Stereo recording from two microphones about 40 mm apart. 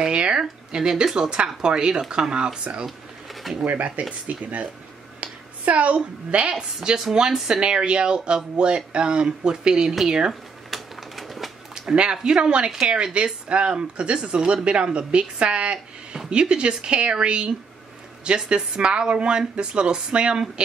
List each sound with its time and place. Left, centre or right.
0.0 s speech: right
3.6 s a woman's voice: right
6.5 s speech: right
7.6 s speech: right
10.7 s a sound: centre
11.9 s speech: right